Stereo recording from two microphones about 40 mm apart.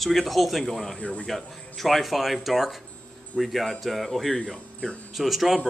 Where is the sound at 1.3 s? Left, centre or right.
Centre.